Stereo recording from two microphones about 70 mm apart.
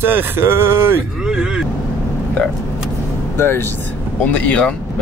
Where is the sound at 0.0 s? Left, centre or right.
Right.